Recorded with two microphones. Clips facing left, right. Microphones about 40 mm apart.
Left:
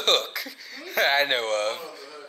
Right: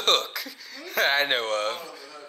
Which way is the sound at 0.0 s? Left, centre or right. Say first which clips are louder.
Even; centre.